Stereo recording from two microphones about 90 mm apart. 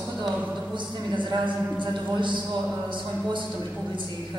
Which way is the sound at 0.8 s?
60° right (ahead or behind).